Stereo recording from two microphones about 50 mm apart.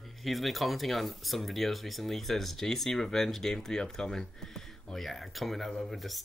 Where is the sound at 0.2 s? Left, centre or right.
Centre.